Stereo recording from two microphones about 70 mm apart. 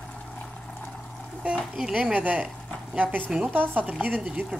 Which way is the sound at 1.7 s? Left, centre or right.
Centre.